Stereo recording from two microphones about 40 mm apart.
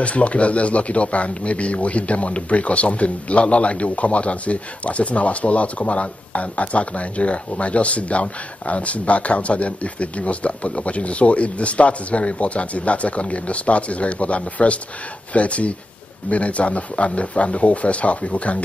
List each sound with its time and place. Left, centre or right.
0.0 s speech: left